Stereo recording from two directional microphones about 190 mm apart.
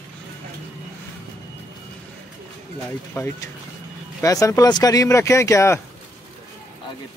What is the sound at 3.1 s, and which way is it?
Speech, 15° left (ahead or behind).